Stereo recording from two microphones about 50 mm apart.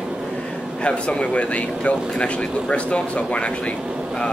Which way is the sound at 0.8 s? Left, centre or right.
Left.